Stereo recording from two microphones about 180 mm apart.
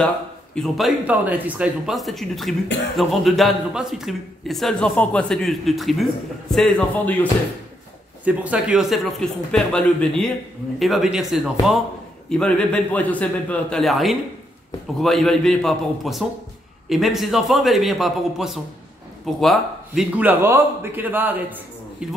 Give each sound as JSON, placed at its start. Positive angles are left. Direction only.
{"t": 0.6, "sound": "a man's voice", "side_deg": 0}
{"t": 8.3, "sound": "a man's voice", "side_deg": -5}